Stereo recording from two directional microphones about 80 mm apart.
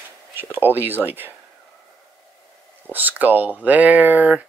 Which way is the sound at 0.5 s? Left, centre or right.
Right.